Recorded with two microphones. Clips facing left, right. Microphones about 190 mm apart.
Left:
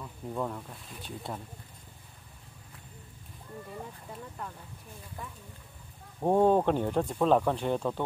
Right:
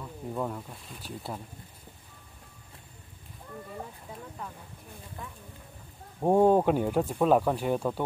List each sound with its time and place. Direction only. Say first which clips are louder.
0.3 s speech: right 1 dB; 5° right (ahead or behind)
6.2 s speech: right 2 dB; 10° right (ahead or behind)